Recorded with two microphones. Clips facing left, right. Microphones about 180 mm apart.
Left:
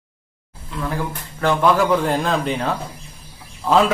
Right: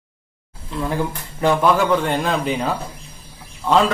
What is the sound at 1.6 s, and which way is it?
Speech, centre (ahead or behind).